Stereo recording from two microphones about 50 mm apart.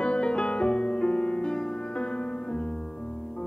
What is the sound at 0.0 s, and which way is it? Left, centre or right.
Music, centre.